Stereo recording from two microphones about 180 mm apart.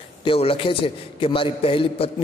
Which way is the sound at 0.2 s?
30° left (ahead or behind).